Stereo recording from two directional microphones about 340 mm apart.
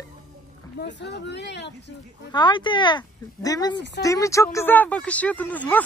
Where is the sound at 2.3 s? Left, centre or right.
Centre.